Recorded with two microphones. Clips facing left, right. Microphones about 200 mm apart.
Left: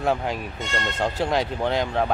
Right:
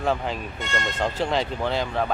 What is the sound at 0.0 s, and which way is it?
Speech, 10° left (ahead or behind).